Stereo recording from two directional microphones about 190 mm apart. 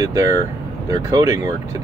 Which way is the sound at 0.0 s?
15° right (ahead or behind).